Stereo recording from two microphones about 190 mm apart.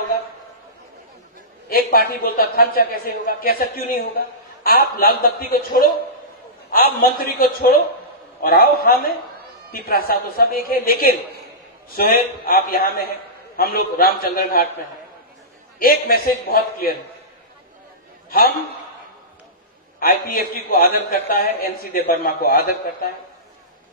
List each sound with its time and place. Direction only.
1.7 s a man's voice: 50° left (ahead or behind)
6.7 s a man's voice: 50° left (ahead or behind)
15.8 s a man's voice: 50° left (ahead or behind)
20.0 s a man's voice: 50° left (ahead or behind)